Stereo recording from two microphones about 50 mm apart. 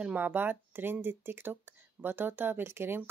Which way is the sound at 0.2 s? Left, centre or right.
Right.